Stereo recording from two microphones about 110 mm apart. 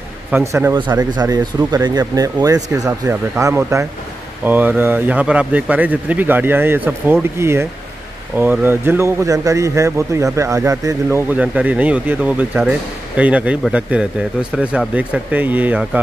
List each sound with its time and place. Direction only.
0.3 s a man's voice: 25° right (ahead or behind)
0.7 s a man's voice: 40° right (ahead or behind)
4.5 s a man's voice: 15° right (ahead or behind)
11.3 s speech: 10° right (ahead or behind)